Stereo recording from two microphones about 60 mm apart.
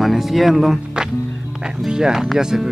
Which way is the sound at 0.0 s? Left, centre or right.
Centre.